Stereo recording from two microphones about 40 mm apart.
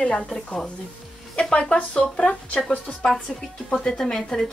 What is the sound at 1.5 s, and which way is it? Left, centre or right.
Speech, left.